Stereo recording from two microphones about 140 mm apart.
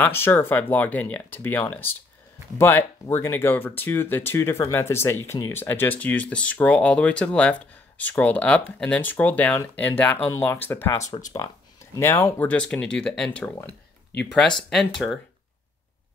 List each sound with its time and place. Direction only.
0.0 s speech: 15° left (ahead or behind)
12.4 s speech: 5° left (ahead or behind)
14.6 s speech: centre (ahead or behind)